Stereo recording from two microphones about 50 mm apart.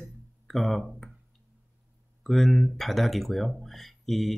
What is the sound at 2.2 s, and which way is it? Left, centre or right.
Speech, centre.